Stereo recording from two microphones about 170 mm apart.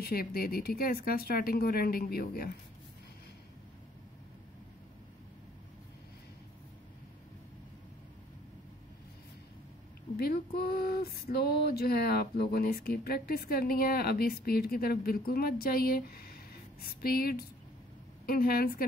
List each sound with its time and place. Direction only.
0.0 s speech: 60° left (ahead or behind)
10.1 s speech: 65° left (ahead or behind)